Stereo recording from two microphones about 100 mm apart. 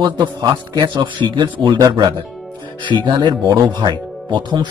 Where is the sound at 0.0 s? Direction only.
45° right (ahead or behind).